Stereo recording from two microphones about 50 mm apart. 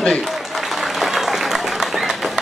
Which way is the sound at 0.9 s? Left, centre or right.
Centre.